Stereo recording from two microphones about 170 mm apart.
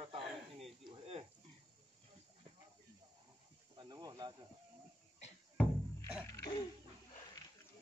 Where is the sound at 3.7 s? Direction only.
25° right (ahead or behind).